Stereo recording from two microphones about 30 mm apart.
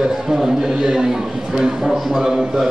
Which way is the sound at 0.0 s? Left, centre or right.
Centre.